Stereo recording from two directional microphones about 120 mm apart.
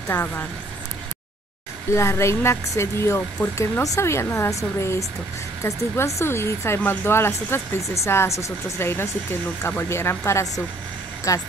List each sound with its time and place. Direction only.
0.1 s speech: 15° left (ahead or behind)
1.9 s speech: 25° left (ahead or behind)